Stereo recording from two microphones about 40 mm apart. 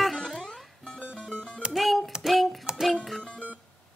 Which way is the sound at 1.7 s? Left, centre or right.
Centre.